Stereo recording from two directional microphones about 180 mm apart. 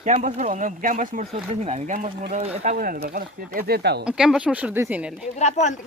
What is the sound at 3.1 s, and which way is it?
Speech, 55° right (ahead or behind).